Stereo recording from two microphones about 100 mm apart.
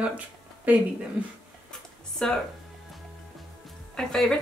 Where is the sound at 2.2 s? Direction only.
10° left (ahead or behind).